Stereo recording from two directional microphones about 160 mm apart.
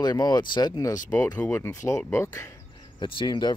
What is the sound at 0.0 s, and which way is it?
Speech, 25° left (ahead or behind).